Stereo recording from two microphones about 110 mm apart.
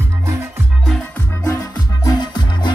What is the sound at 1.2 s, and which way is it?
Music, 30° left (ahead or behind).